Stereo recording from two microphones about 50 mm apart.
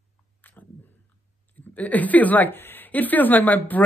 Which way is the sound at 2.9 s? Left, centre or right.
Left.